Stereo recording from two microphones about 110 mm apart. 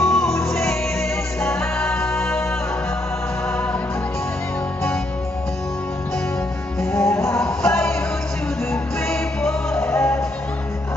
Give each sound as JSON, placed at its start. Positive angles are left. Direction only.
{"t": 0.0, "sound": "music", "side_deg": 5}
{"t": 1.5, "sound": "music", "side_deg": 20}
{"t": 6.9, "sound": "music", "side_deg": 20}
{"t": 7.3, "sound": "music", "side_deg": 5}
{"t": 9.1, "sound": "music", "side_deg": 5}
{"t": 9.8, "sound": "music", "side_deg": 20}